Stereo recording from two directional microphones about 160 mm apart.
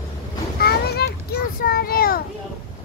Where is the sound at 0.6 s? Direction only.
80° left; by 2.2 s 65° left (ahead or behind).